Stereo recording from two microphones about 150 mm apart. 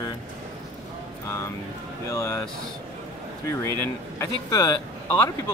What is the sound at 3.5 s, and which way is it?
Speech, 20° left (ahead or behind).